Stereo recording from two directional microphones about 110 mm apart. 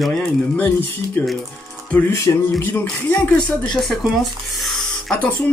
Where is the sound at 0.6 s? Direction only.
15° left (ahead or behind).